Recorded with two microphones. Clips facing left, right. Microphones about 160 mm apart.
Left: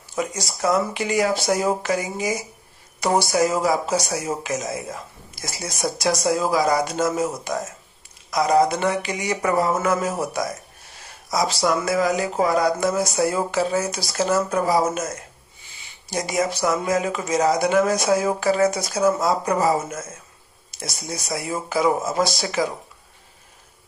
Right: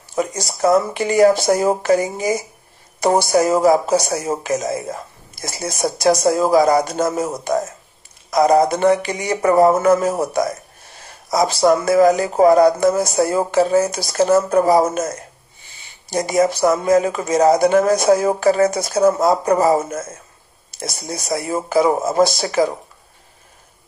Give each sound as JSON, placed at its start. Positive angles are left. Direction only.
{"t": 0.1, "sound": "music", "side_deg": -45}
{"t": 16.1, "sound": "music", "side_deg": -45}